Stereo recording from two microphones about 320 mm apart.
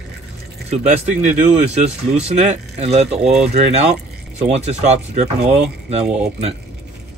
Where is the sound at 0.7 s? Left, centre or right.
Right.